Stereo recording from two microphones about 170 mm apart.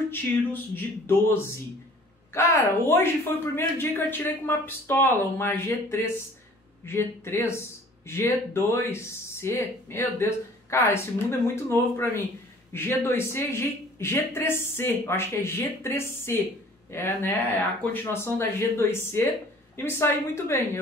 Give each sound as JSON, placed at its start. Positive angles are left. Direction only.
{"t": 0.1, "sound": "speech", "side_deg": 10}